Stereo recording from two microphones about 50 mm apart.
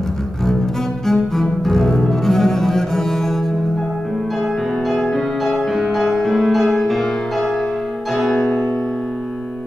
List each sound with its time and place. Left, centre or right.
1.0 s cello: centre
4.9 s music: left
5.4 s music: centre